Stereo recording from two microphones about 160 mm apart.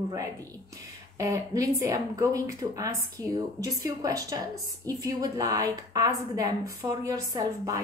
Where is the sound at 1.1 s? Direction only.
20° right (ahead or behind).